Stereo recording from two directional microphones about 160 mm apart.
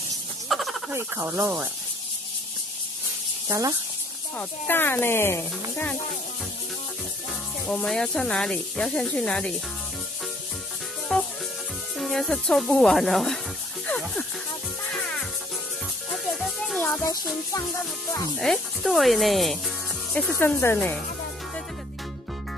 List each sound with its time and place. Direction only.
0.5 s a sound: centre (ahead or behind)
0.9 s speech: 15° right (ahead or behind)
3.4 s speech: 20° right (ahead or behind)
4.4 s speech: 10° left (ahead or behind)
7.6 s speech: centre (ahead or behind)
11.1 s music: 5° left (ahead or behind)
12.0 s speech: centre (ahead or behind)
14.9 s music: 5° left (ahead or behind)
16.3 s music: centre (ahead or behind)
16.8 s speech: 10° left (ahead or behind)
18.4 s speech: centre (ahead or behind)